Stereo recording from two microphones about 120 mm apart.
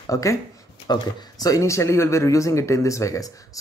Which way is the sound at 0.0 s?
25° left (ahead or behind).